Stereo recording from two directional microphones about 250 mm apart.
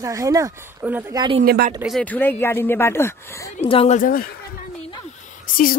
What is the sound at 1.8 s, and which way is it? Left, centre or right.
Speech, centre.